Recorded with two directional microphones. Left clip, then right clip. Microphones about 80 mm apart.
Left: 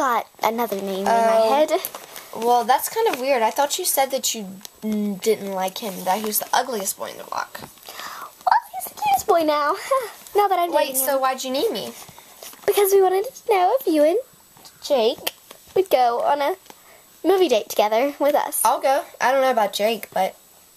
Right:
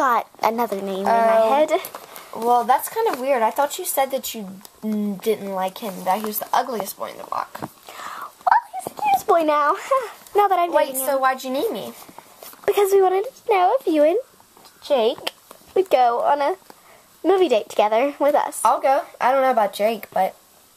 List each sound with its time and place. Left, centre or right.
0.4 s a woman's voice: centre
1.0 s speech: left
1.4 s speech: centre
2.5 s speech: left
8.5 s a sound: left
9.3 s speech: left
12.6 s speech: centre
12.9 s speech: left
15.7 s a woman's voice: centre
18.6 s speech: left